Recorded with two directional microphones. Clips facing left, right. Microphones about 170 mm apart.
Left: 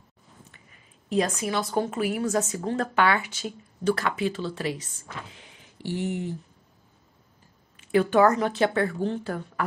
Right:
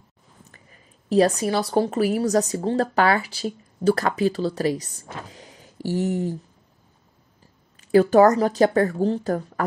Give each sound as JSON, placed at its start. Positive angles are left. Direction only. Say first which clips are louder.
{"t": 1.0, "sound": "a woman's voice", "louder": "right 7 dB", "side_deg": -35}
{"t": 7.8, "sound": "a woman's voice", "louder": "right 5 dB", "side_deg": -40}